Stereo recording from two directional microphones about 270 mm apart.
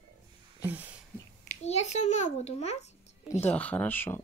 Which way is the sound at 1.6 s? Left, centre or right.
Left.